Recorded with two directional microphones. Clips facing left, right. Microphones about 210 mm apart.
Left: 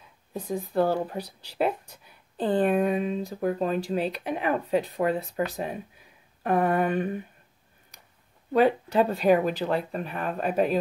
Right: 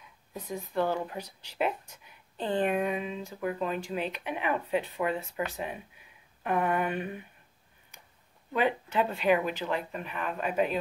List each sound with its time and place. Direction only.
0.3 s speech: 30° left (ahead or behind)
8.5 s speech: 35° left (ahead or behind)